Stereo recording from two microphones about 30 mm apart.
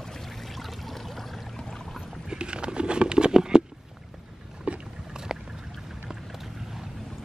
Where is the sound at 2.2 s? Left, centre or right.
Right.